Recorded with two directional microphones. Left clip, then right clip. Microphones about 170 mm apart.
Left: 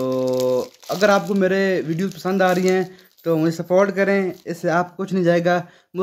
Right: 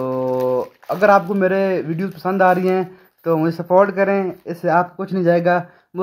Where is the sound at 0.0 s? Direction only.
15° left (ahead or behind).